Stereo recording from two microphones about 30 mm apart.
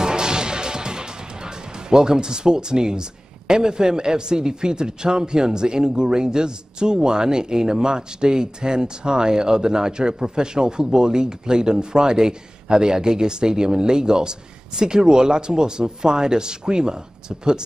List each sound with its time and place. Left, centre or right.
0.0 s music: right